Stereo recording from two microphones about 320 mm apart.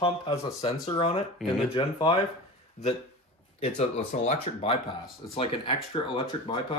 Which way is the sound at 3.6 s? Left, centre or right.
Left.